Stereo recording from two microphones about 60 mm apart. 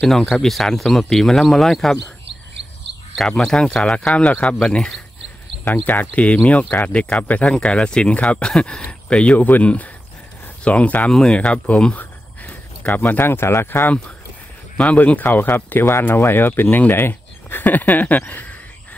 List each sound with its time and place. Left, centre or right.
0.0 s speech: centre
3.2 s speech: centre
4.1 s speech: left
5.7 s speech: left
11.1 s speech: centre
13.2 s speech: left
14.8 s speech: left